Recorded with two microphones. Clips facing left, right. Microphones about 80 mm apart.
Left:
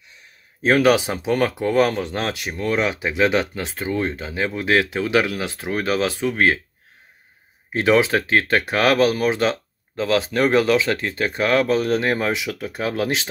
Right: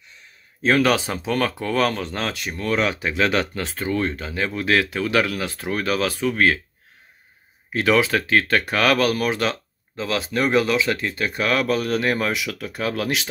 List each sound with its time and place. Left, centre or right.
0.6 s speech: centre
7.7 s speech: left
9.9 s speech: left